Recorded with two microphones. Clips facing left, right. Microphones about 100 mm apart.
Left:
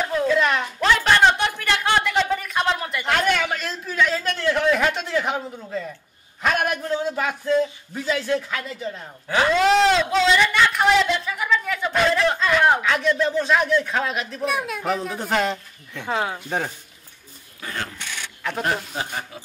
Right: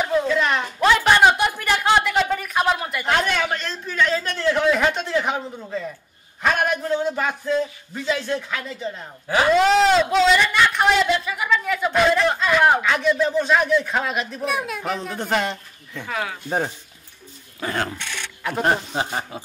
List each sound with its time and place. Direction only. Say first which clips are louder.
0.0 s a sound: even; centre (ahead or behind)
3.4 s a man's voice: right 1 dB; 5° left (ahead or behind)
16.1 s speech: left 3 dB; 30° left (ahead or behind)
16.4 s speech: right 2 dB; 10° right (ahead or behind)
17.6 s speech: right 6 dB; 55° right (ahead or behind)
19.0 s speech: right 4 dB; 25° right (ahead or behind)